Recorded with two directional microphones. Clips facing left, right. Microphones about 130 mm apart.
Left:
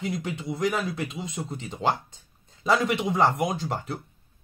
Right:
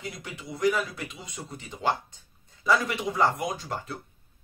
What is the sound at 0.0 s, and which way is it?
Speech, 25° left (ahead or behind).